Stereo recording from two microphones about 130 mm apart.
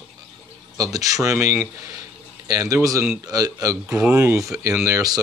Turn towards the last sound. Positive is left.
turn(degrees=-30)  # may be behind; listen again after turning